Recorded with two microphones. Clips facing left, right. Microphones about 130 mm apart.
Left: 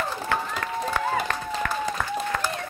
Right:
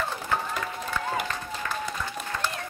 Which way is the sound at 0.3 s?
75° left (ahead or behind).